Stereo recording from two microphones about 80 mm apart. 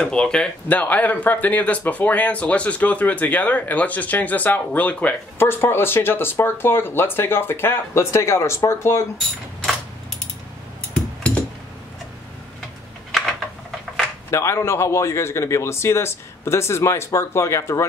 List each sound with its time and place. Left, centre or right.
0.0 s speech: centre; by 9.0 s left
14.3 s speech: left